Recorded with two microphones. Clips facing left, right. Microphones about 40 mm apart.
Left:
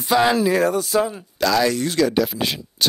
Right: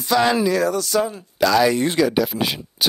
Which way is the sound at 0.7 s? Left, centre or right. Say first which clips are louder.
Left 1 dB; centre.